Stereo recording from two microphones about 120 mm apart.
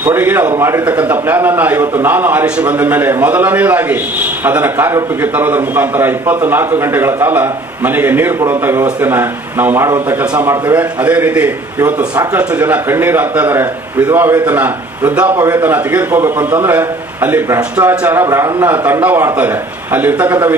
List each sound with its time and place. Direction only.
0.0 s a man's voice: 15° right (ahead or behind)